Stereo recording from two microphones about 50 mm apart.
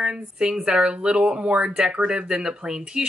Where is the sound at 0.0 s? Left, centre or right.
Centre.